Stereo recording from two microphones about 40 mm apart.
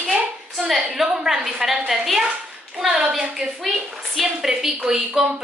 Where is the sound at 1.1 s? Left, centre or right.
Centre.